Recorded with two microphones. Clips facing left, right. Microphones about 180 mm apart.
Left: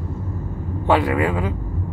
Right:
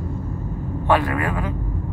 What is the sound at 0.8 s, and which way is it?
Speech, 20° left (ahead or behind).